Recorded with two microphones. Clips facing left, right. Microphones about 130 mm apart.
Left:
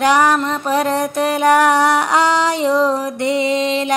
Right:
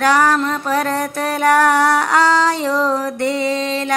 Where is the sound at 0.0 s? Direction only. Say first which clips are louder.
Left 1 dB; 20° left (ahead or behind).